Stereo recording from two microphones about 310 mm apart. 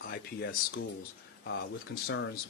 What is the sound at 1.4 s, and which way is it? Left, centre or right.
Speech, left.